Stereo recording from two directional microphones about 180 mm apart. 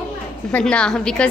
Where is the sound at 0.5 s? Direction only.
5° left (ahead or behind).